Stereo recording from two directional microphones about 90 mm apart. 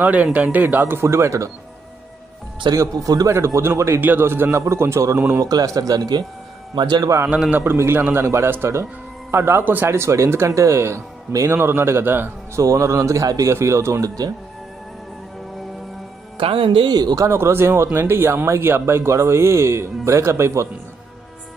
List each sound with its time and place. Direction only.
0.0 s speech: 15° right (ahead or behind); by 1.5 s 35° right (ahead or behind)
2.7 s a man's voice: 40° right (ahead or behind)
5.4 s a man's voice: 45° right (ahead or behind)
7.2 s a man's voice: 10° right (ahead or behind)
7.5 s speech: 25° right (ahead or behind)
12.5 s a man's voice: 35° right (ahead or behind)
16.3 s speech: 75° right (ahead or behind)
16.9 s a man's voice: 45° right (ahead or behind)